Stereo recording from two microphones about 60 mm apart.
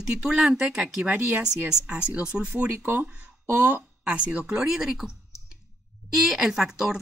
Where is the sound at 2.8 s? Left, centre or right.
Right.